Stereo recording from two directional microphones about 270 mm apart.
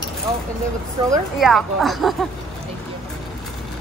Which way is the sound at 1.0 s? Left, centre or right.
Centre.